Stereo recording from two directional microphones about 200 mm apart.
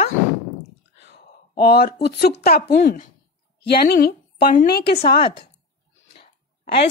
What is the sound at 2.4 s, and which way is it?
A woman's voice, 50° left (ahead or behind).